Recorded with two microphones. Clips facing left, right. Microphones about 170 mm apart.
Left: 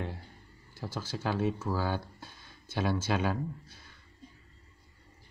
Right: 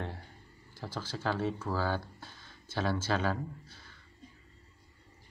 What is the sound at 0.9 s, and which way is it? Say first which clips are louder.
Speech: left 1 dB; 10° left (ahead or behind).